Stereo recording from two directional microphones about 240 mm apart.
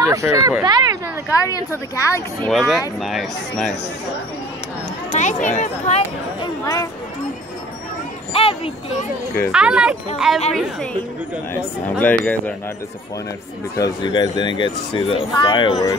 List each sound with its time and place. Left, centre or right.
0.1 s speech: centre
1.4 s speech: centre
2.5 s speech: centre
5.1 s speech: left
6.6 s speech: centre
8.3 s a sound: left
9.5 s speech: centre
12.0 s speech: centre
13.7 s speech: centre